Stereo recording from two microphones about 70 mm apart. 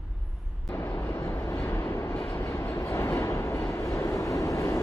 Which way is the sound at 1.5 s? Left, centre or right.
Left.